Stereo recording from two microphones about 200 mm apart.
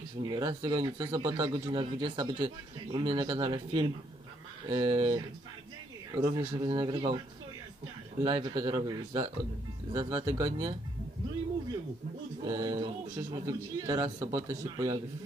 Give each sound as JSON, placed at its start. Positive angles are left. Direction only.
{"t": 0.2, "sound": "speech", "side_deg": -25}
{"t": 8.2, "sound": "speech", "side_deg": -20}
{"t": 12.4, "sound": "speech", "side_deg": -20}